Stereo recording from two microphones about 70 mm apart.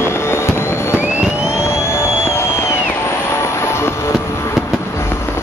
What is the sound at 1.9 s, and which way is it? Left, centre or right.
Music, left.